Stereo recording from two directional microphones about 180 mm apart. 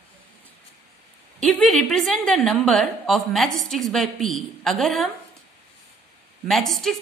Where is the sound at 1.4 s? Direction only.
5° left (ahead or behind).